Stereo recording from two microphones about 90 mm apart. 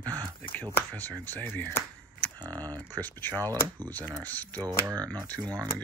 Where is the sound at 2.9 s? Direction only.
20° left (ahead or behind).